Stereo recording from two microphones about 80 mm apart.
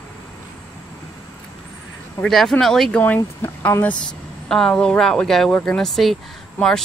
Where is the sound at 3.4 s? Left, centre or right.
Left.